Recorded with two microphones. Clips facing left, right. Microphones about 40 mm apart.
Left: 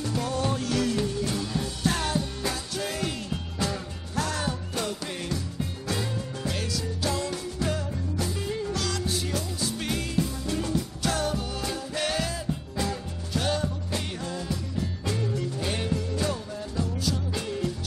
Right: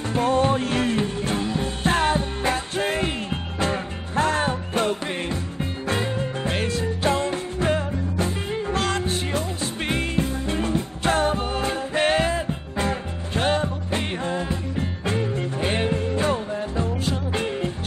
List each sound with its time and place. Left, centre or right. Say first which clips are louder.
0.1 s music: right 10 dB; right